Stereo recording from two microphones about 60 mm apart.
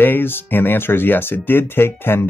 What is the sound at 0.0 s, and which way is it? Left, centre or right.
Speech, left.